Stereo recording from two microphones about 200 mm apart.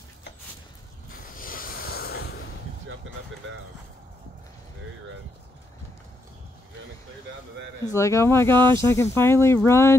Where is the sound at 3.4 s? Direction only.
75° right (ahead or behind).